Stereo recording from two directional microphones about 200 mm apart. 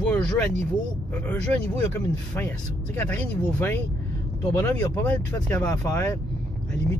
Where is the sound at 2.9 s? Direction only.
10° left (ahead or behind).